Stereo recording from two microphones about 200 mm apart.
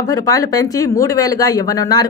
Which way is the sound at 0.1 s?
15° left (ahead or behind).